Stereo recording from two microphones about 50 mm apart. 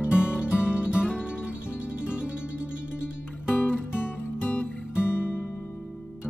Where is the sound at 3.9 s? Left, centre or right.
Left.